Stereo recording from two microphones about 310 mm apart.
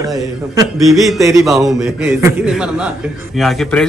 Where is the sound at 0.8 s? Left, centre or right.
Centre.